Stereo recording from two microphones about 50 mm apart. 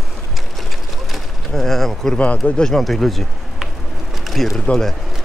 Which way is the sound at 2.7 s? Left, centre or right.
Centre.